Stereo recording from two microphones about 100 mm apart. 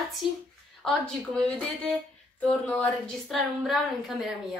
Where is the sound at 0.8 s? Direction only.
10° left (ahead or behind).